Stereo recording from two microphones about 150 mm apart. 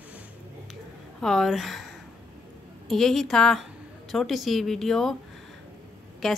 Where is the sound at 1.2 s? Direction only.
Centre (ahead or behind).